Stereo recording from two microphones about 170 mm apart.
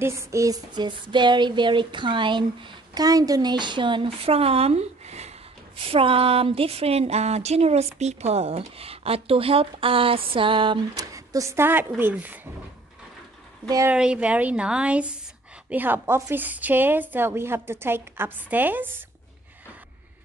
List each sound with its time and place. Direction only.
0.0 s a sound: 15° right (ahead or behind); by 5.3 s 40° right (ahead or behind)
5.8 s a woman's voice: 35° right (ahead or behind); by 12.4 s 10° right (ahead or behind)
13.7 s a woman's voice: 20° right (ahead or behind)
13.9 s a woman's voice: 5° right (ahead or behind)